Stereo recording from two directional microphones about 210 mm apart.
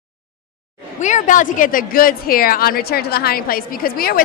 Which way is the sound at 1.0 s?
35° left (ahead or behind).